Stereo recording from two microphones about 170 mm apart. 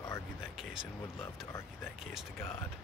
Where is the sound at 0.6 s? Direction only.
5° right (ahead or behind).